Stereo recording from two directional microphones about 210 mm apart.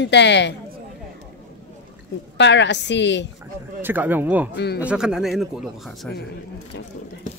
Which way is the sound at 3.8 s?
10° right (ahead or behind).